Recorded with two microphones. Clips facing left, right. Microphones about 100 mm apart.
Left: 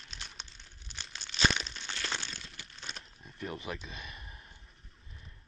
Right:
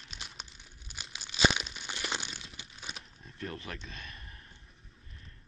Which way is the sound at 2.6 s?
5° right (ahead or behind).